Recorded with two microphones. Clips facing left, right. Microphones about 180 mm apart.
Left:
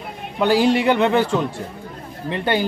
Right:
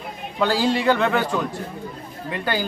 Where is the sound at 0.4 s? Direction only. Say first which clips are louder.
Left 4 dB; 20° left (ahead or behind).